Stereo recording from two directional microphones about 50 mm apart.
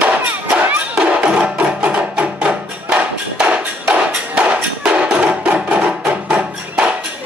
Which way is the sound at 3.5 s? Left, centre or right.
Right.